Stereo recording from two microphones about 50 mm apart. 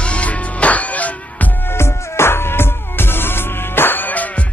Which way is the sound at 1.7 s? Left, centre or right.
Left.